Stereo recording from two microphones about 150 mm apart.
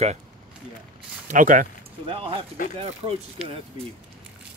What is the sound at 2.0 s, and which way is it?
Speech, 35° right (ahead or behind).